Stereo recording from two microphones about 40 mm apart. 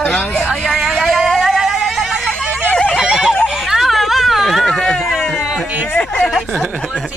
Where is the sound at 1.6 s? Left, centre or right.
Centre.